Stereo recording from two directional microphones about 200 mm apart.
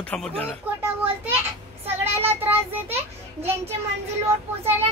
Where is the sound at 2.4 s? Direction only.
10° right (ahead or behind).